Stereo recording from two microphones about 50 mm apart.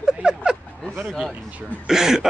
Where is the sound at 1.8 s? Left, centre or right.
Centre.